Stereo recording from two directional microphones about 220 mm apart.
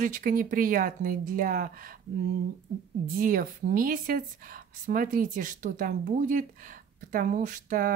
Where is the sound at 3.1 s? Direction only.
40° right (ahead or behind).